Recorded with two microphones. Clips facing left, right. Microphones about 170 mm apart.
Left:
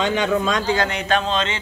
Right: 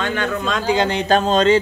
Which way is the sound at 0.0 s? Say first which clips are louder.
Left 2 dB; 15° left (ahead or behind).